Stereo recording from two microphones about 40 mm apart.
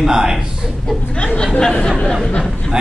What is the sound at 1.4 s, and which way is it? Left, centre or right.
Speech, centre.